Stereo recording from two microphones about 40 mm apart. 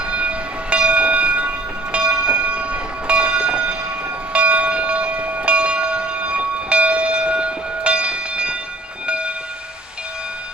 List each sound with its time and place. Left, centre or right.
0.0 s train: right
4.3 s bell: right
9.0 s train: right